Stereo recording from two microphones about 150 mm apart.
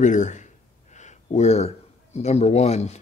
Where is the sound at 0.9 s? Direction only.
50° left (ahead or behind).